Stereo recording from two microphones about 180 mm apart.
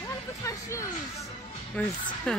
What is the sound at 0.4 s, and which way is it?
Music, 15° left (ahead or behind).